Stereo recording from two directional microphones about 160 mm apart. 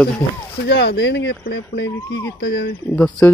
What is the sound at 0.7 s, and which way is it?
Speech, 90° left.